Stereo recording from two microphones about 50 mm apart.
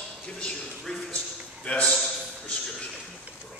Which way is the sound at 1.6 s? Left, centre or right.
Centre.